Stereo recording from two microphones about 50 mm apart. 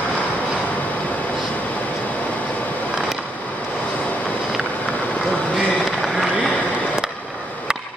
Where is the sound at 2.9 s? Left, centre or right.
Centre.